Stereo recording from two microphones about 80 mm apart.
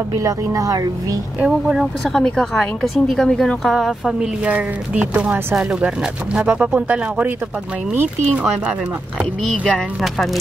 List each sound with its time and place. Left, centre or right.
0.2 s speech: right
1.4 s a woman's voice: centre
4.5 s speech: centre
10.0 s a woman's voice: centre